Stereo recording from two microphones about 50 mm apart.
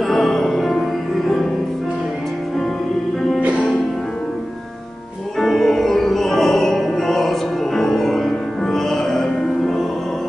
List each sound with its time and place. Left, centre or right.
0.1 s music: centre
5.4 s music: centre